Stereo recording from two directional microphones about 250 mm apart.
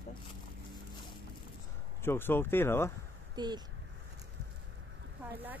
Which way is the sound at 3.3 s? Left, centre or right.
Centre.